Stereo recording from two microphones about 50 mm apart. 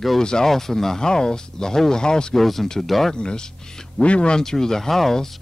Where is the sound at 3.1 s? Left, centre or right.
Centre.